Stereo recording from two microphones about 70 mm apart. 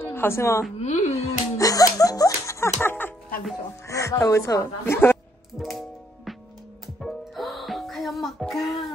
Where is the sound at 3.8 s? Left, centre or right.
Left.